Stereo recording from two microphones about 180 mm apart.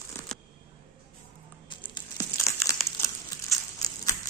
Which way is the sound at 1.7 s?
25° left (ahead or behind).